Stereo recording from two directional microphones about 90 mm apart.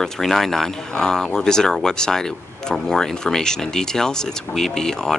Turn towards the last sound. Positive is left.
turn(degrees=5)  # may be behind; listen again after turning